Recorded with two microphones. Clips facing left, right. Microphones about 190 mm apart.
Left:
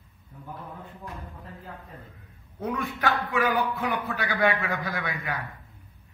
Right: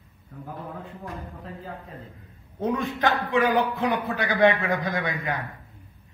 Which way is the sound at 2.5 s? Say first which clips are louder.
Right 4 dB; 30° right (ahead or behind).